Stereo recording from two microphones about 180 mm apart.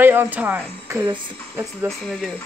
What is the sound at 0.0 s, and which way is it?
Speech, 10° right (ahead or behind).